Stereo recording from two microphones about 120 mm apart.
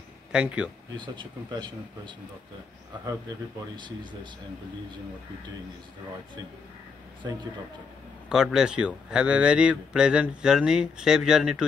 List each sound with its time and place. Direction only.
0.3 s speech: 10° right (ahead or behind)
0.9 s speech: 40° right (ahead or behind)
3.7 s speech: 40° right (ahead or behind)
8.3 s speech: 5° right (ahead or behind)